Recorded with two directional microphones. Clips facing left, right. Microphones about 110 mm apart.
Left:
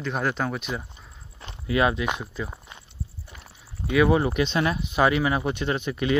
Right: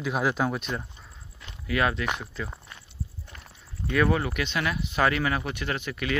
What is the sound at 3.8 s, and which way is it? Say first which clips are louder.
Speech: left 4 dB; 10° left (ahead or behind).